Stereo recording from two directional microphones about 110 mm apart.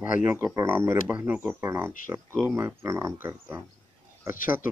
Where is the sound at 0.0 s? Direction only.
20° right (ahead or behind).